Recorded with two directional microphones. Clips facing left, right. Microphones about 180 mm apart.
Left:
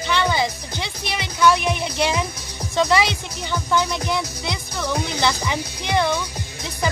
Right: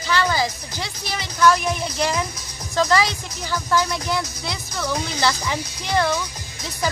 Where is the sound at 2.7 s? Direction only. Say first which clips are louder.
Left 1 dB; centre (ahead or behind).